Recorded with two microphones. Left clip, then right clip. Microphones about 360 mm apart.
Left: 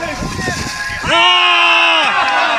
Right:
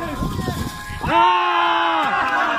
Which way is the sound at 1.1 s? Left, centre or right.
Centre.